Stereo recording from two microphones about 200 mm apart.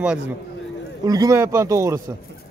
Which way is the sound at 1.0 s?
20° right (ahead or behind).